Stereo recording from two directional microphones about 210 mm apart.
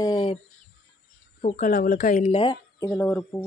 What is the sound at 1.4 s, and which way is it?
Speech, 40° left (ahead or behind).